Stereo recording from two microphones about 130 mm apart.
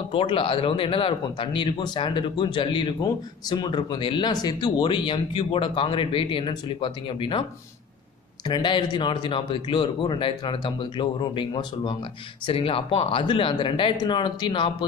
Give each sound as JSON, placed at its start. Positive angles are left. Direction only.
{"t": 0.1, "sound": "speech", "side_deg": 40}
{"t": 8.5, "sound": "speech", "side_deg": 35}